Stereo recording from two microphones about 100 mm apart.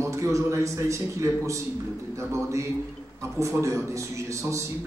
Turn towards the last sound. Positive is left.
turn(degrees=-30)  # may be behind; listen again after turning